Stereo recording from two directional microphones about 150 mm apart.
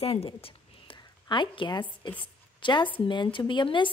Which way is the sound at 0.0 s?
40° left (ahead or behind).